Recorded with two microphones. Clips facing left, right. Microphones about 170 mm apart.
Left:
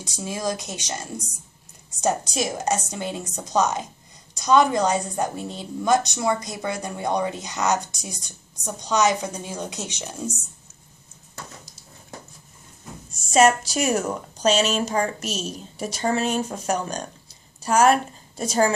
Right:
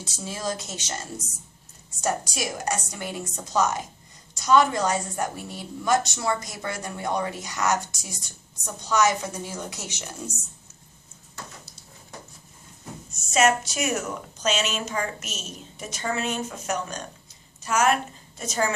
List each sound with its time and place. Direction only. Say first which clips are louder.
0.0 s a woman's voice: left 4 dB; 15° left (ahead or behind)
13.3 s a woman's voice: left 4 dB; 35° left (ahead or behind)